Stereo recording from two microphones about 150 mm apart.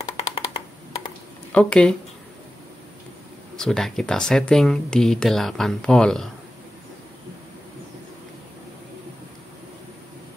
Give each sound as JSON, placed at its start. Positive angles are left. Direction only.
{"t": 0.0, "sound": "a sound", "side_deg": 35}
{"t": 1.5, "sound": "speech", "side_deg": 5}
{"t": 3.5, "sound": "speech", "side_deg": 5}